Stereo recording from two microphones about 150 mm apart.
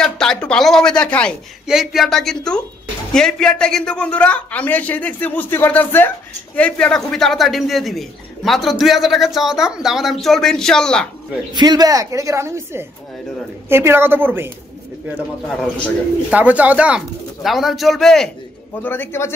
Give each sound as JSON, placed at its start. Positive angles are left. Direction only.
{"t": 0.0, "sound": "speech", "side_deg": 5}
{"t": 11.5, "sound": "a woman's voice", "side_deg": -25}
{"t": 15.1, "sound": "speech", "side_deg": 5}
{"t": 16.3, "sound": "speech", "side_deg": -10}
{"t": 18.8, "sound": "speech", "side_deg": 15}